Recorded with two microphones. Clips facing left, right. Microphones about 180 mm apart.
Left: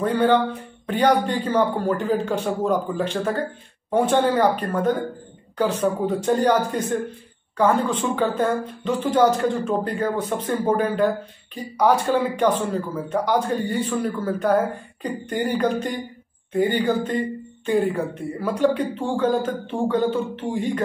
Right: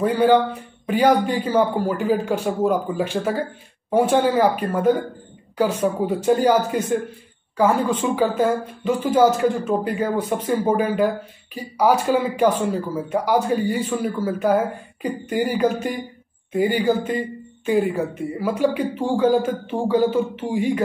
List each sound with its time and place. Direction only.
0.0 s a woman's voice: 10° right (ahead or behind)